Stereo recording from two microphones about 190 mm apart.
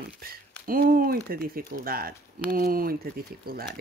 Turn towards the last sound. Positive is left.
turn(degrees=-50)  # may be behind; listen again after turning